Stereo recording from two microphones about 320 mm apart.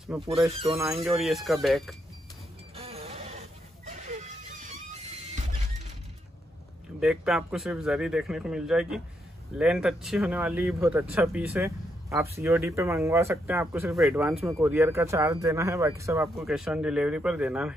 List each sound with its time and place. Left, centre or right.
0.0 s speech: centre
0.5 s speech: centre
0.7 s speech: centre
2.7 s a sound: centre
7.0 s speech: centre